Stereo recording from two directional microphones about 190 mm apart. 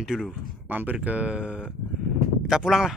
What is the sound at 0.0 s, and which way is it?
Speech, 5° right (ahead or behind).